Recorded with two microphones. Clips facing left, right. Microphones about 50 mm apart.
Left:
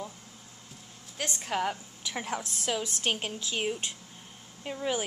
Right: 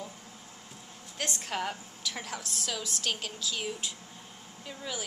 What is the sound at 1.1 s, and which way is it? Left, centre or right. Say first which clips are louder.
Speech: left 2 dB; centre.